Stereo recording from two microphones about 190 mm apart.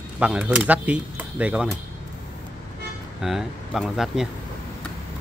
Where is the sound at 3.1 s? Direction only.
Centre (ahead or behind).